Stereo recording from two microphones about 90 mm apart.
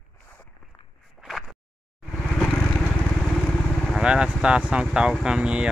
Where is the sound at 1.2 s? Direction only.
Centre (ahead or behind).